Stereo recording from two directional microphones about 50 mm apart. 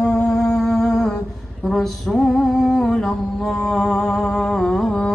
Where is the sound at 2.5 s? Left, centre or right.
Centre.